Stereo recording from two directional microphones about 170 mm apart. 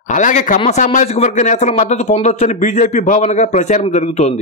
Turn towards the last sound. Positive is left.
turn(degrees=45)  # may be behind; listen again after turning